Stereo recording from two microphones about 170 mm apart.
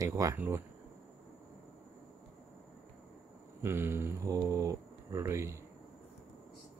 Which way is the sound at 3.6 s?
15° right (ahead or behind).